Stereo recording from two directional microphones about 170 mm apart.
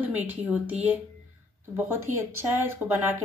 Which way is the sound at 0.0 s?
10° right (ahead or behind).